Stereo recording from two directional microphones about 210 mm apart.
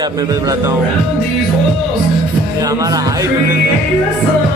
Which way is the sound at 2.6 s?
15° right (ahead or behind).